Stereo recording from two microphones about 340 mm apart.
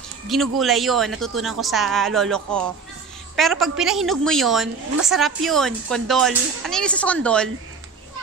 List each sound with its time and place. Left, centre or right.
0.3 s speech: centre